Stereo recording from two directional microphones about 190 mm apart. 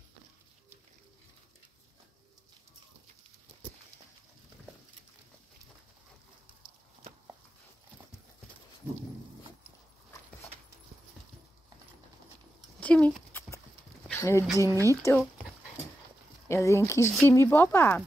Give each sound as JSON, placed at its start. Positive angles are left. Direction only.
{"t": 12.8, "sound": "a sound", "side_deg": 5}
{"t": 14.0, "sound": "speech", "side_deg": 15}
{"t": 16.4, "sound": "speech", "side_deg": 15}